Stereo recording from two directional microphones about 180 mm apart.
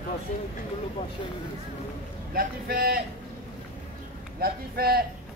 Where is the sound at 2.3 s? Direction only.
55° right (ahead or behind).